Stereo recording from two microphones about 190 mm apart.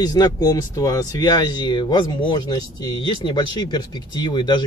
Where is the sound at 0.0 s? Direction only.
20° left (ahead or behind).